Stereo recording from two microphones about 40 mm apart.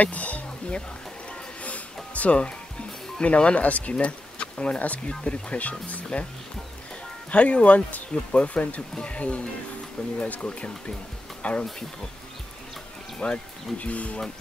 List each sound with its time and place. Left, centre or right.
0.0 s speech: left
2.1 s speech: left
7.2 s speech: left
10.1 s speech: left
10.4 s speech: left
13.2 s speech: left